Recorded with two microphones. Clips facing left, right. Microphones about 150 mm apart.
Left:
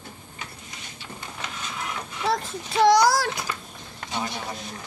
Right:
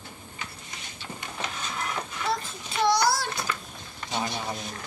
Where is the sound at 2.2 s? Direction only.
90° left.